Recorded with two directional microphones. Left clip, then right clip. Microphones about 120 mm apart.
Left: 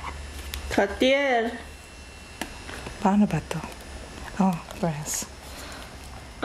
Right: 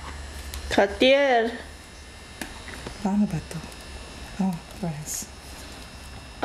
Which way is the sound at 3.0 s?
10° left (ahead or behind).